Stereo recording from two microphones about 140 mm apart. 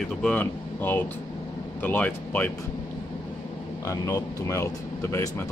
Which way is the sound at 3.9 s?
20° left (ahead or behind).